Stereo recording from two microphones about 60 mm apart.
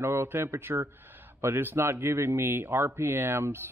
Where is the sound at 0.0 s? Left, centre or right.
Right.